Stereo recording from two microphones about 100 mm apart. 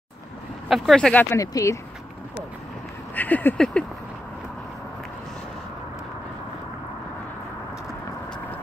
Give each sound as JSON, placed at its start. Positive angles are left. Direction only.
{"t": 0.7, "sound": "speech", "side_deg": 0}
{"t": 1.3, "sound": "speech", "side_deg": 30}
{"t": 3.2, "sound": "a sound", "side_deg": 15}
{"t": 3.5, "sound": "speech", "side_deg": 5}